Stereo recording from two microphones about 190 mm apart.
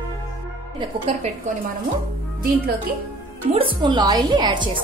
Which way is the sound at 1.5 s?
40° right (ahead or behind).